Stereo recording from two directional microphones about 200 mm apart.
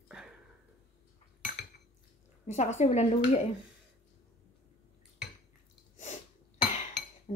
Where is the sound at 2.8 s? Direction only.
35° left (ahead or behind).